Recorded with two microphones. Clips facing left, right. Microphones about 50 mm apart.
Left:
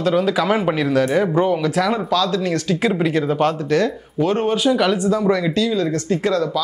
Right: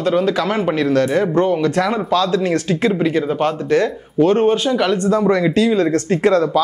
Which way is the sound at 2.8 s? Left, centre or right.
Centre.